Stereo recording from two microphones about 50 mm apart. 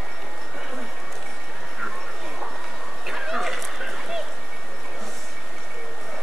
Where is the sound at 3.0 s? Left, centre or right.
Centre.